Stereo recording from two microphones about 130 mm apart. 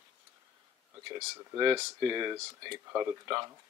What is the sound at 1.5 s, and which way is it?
Speech, 30° right (ahead or behind).